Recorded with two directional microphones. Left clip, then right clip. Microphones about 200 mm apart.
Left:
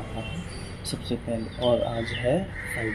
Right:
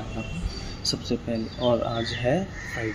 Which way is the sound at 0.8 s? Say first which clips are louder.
Right 5 dB; 5° right (ahead or behind).